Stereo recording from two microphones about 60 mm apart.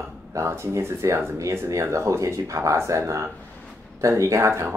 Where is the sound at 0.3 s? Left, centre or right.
Right.